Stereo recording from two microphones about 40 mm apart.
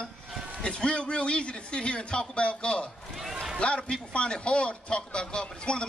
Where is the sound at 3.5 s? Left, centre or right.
Left.